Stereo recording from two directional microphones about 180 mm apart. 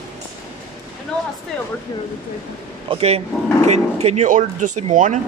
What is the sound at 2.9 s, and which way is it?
Speech, 35° right (ahead or behind).